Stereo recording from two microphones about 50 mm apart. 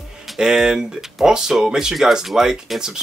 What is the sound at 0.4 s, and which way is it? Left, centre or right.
Speech, centre.